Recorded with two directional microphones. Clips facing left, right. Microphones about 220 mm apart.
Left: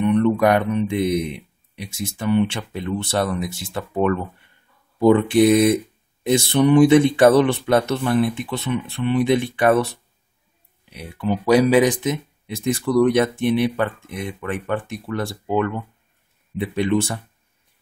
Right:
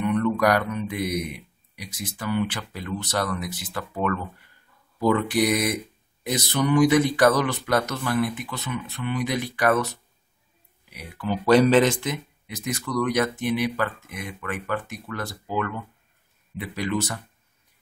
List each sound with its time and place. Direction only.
0.0 s speech: 25° left (ahead or behind)
11.4 s speech: 10° left (ahead or behind); by 15.3 s 30° left (ahead or behind)
16.5 s speech: 25° left (ahead or behind)